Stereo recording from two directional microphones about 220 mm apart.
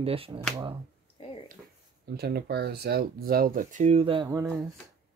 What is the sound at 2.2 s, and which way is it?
Speech, 45° right (ahead or behind).